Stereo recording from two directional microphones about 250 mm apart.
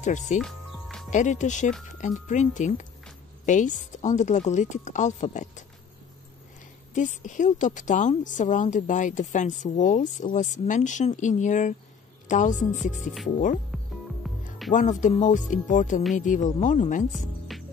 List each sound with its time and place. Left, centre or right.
0.0 s a woman's voice: left
0.4 s music: centre
1.1 s a woman's voice: left
6.9 s a woman's voice: left
14.2 s music: centre
14.7 s a woman's voice: left